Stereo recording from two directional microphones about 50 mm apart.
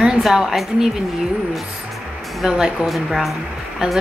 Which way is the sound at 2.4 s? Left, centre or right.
Centre.